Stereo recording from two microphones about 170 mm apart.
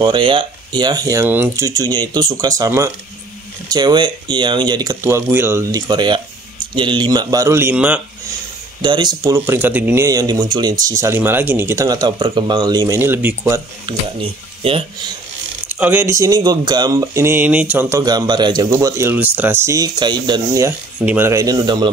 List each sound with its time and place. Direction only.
0.0 s speech: 30° right (ahead or behind); by 8.0 s 10° right (ahead or behind)
8.8 s speech: 25° right (ahead or behind); by 13.6 s 10° right (ahead or behind)
13.8 s speech: 35° right (ahead or behind)
15.7 s speech: 10° right (ahead or behind)
21.0 s speech: 10° right (ahead or behind)